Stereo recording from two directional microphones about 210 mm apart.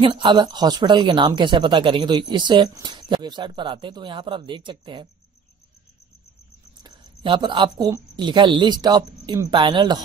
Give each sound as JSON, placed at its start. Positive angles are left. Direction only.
{"t": 0.0, "sound": "speech", "side_deg": -25}
{"t": 6.8, "sound": "a woman's voice", "side_deg": -20}